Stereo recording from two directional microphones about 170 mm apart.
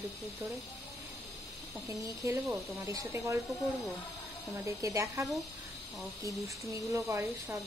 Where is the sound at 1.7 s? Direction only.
20° right (ahead or behind).